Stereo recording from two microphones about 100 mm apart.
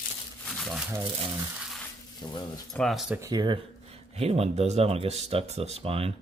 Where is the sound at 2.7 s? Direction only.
Centre (ahead or behind).